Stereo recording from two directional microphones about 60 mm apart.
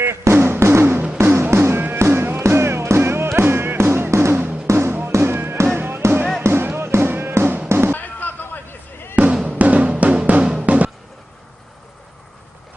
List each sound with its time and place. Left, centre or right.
0.0 s music: right
7.9 s a sound: left
9.1 s music: right